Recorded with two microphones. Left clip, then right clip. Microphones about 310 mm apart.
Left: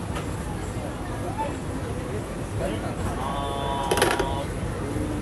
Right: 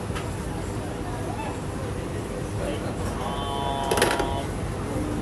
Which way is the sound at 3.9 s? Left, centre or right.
Centre.